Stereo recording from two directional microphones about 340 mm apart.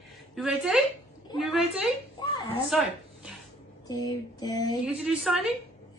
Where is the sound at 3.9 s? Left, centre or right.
Centre.